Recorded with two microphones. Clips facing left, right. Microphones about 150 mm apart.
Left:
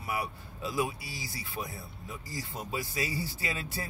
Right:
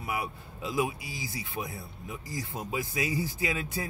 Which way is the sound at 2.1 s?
15° right (ahead or behind).